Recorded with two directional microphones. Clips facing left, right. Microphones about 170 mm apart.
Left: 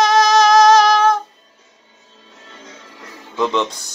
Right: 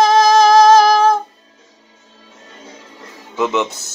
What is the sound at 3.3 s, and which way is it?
Music, 10° right (ahead or behind).